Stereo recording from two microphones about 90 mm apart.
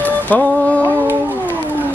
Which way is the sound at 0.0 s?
15° left (ahead or behind).